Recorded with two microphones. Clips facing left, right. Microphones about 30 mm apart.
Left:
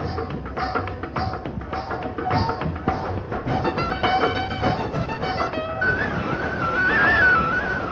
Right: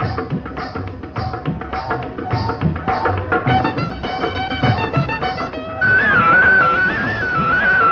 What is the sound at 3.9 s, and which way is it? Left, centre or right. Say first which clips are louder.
Music: left 3 dB; centre.